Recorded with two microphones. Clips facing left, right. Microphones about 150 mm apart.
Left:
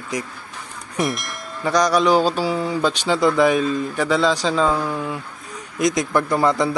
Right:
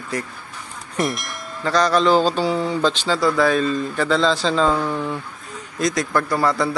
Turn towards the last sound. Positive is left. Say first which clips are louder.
# left 2 dB
turn(degrees=20)  # may be behind; listen again after turning